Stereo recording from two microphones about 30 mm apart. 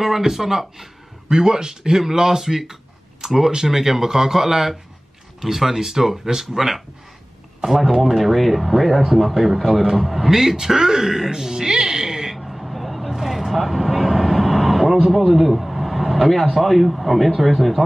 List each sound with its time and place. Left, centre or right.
0.0 s speech: centre
1.3 s speech: right
11.2 s a sound: centre
12.4 s vehicle: centre
15.1 s speech: centre